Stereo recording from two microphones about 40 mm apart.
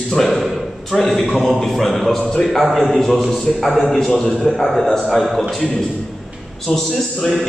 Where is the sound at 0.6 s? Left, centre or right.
Centre.